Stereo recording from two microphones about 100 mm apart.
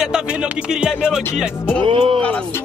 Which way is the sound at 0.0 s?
5° right (ahead or behind).